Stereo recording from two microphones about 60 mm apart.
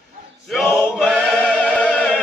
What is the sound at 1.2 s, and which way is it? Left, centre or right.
Music, centre.